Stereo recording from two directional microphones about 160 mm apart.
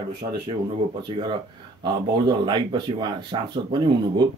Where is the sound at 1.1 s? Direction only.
30° right (ahead or behind).